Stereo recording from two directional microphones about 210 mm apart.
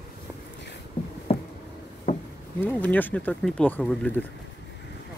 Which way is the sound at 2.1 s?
40° left (ahead or behind).